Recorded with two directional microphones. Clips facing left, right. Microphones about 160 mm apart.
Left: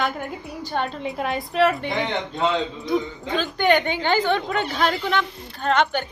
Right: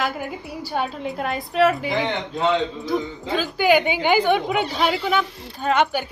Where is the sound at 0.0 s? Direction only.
5° right (ahead or behind).